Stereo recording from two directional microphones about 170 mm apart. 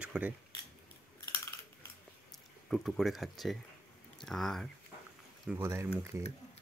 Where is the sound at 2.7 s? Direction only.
Centre (ahead or behind).